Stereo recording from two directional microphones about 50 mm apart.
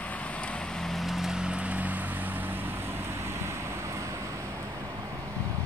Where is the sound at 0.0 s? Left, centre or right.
Left; by 4.5 s right.